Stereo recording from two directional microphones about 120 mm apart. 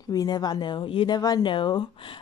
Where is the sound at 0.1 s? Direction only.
35° left (ahead or behind).